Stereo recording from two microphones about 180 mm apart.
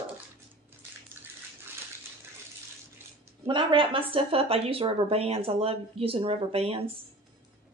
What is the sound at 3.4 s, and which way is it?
A woman's voice, 25° right (ahead or behind).